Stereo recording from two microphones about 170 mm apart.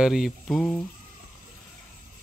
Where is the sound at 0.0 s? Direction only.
5° right (ahead or behind).